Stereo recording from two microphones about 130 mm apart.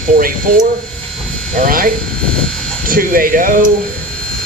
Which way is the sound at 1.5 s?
90° right.